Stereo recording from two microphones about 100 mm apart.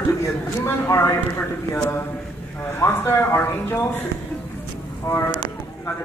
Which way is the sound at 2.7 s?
25° left (ahead or behind).